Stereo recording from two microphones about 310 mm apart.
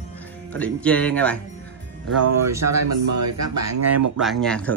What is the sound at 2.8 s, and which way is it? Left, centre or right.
Speech, right.